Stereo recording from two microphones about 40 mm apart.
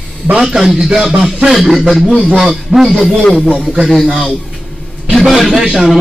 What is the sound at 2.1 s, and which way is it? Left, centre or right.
Speech, centre.